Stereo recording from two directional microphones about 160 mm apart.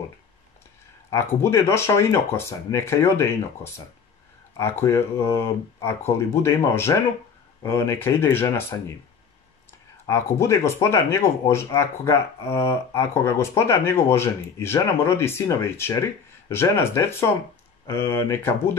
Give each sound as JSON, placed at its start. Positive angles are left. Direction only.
{"t": 1.1, "sound": "speech", "side_deg": 15}
{"t": 10.0, "sound": "speech", "side_deg": 15}